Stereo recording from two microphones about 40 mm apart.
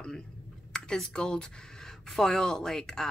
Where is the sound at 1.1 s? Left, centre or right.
Centre.